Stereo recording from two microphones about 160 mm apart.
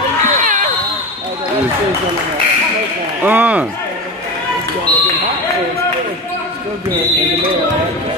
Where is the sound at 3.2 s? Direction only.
10° right (ahead or behind).